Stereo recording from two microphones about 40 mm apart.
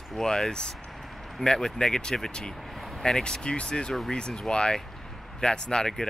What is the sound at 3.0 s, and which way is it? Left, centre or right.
Speech, centre.